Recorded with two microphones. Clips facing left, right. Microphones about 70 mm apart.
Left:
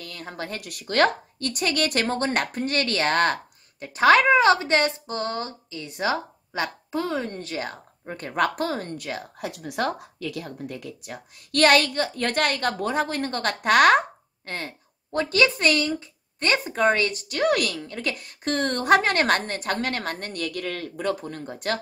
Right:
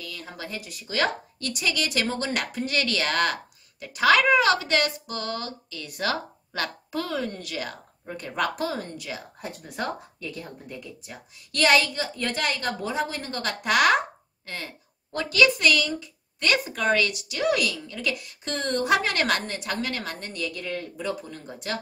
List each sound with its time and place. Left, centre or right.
0.0 s a woman's voice: left
9.4 s a woman's voice: left